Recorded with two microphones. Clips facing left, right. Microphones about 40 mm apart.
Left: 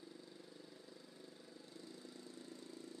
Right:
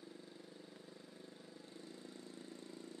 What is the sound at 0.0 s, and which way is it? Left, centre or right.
Vehicle, right.